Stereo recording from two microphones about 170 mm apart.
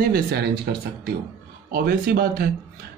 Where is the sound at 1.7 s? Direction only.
60° right (ahead or behind).